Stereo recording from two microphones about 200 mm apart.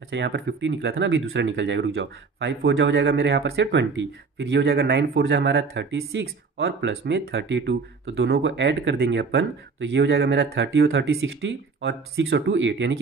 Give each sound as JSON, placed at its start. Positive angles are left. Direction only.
{"t": 0.1, "sound": "speech", "side_deg": -60}